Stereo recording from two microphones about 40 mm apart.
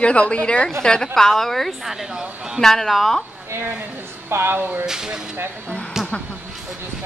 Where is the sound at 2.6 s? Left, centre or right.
Centre.